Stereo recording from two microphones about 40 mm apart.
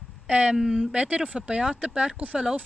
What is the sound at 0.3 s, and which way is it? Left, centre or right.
Speech, right.